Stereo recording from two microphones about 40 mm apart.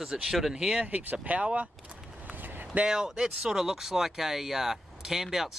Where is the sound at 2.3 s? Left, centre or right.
Right.